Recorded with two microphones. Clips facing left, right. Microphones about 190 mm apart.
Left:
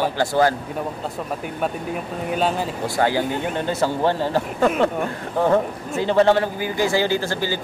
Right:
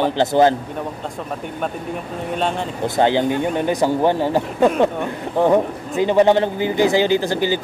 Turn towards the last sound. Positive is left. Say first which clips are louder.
# right 5 dB
turn(degrees=-15)  # may be behind; listen again after turning